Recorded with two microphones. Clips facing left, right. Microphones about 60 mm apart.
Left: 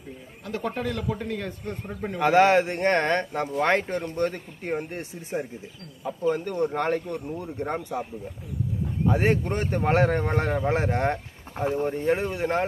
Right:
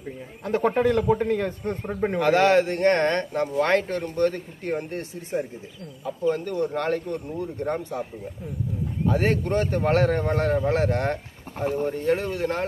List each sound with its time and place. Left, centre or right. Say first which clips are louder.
0.5 s a man's voice: right 8 dB; right
2.1 s speech: even; left